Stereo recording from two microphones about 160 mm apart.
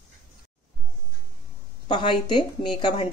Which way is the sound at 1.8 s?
30° left (ahead or behind).